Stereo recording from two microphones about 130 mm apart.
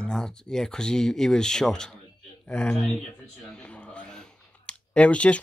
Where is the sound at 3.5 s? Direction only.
10° left (ahead or behind).